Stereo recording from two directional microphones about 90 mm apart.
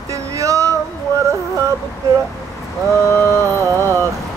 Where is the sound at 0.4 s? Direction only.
35° right (ahead or behind).